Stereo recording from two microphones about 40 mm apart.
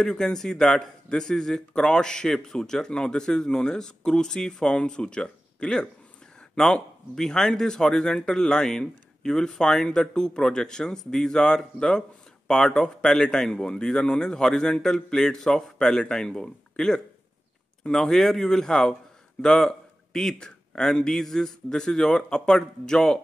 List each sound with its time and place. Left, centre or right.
0.0 s speech: centre
19.7 s a sound: centre
21.1 s speech: centre